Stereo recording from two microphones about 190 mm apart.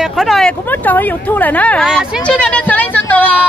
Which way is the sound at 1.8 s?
5° right (ahead or behind).